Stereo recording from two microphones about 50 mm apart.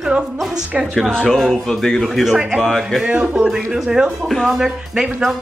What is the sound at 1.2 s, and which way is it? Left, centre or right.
Speech, centre.